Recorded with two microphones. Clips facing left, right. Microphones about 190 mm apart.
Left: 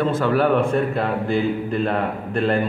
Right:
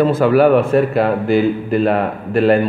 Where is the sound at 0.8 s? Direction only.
85° right.